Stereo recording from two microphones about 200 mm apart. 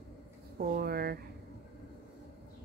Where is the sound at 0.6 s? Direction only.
50° right (ahead or behind).